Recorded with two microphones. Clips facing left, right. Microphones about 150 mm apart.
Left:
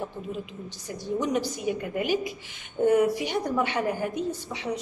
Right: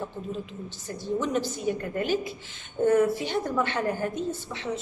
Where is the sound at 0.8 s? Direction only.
15° left (ahead or behind).